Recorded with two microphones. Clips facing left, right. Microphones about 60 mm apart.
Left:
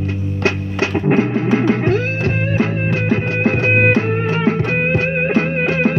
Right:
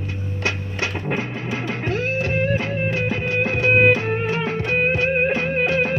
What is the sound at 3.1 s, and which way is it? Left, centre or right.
Music, left.